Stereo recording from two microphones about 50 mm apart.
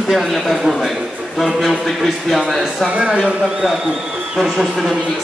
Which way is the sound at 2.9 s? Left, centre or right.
Right.